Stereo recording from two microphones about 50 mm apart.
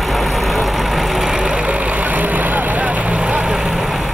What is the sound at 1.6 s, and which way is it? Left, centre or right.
Vehicle, right.